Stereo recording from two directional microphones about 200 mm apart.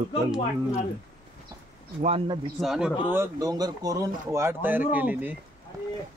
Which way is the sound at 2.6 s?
5° right (ahead or behind).